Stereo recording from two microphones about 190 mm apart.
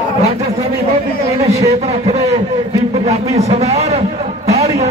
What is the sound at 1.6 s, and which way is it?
Speech, 35° right (ahead or behind).